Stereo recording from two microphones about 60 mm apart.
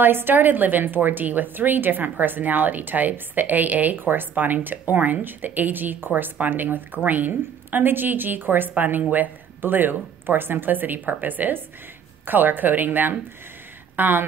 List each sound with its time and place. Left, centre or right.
0.0 s a woman's voice: right